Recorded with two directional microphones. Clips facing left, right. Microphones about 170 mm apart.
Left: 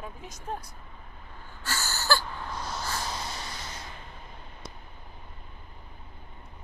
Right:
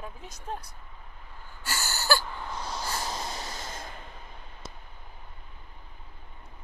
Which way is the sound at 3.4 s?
45° right (ahead or behind).